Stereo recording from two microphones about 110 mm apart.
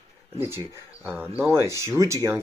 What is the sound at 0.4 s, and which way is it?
Speech, 25° right (ahead or behind).